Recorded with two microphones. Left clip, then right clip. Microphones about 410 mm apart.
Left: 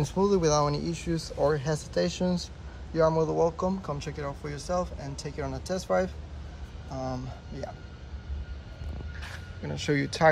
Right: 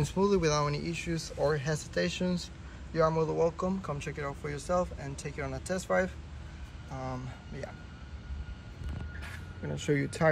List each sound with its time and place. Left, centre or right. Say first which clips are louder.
0.0 s speech: left 3 dB; centre
9.2 s speech: left 3 dB; centre